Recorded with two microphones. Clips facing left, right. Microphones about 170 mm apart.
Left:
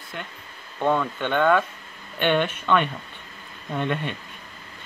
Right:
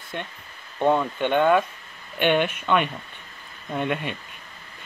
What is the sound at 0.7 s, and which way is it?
A man's voice, 15° right (ahead or behind).